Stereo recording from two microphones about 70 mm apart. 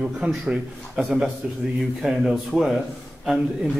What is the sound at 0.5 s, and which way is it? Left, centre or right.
A man's voice, centre.